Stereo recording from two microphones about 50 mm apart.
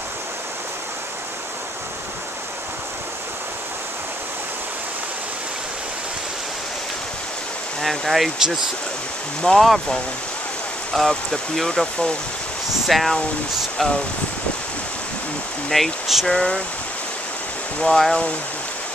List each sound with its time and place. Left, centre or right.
7.8 s speech: centre
9.5 s speech: centre
10.9 s speech: centre
12.8 s speech: centre
15.7 s speech: centre
16.3 s speech: centre
17.8 s speech: centre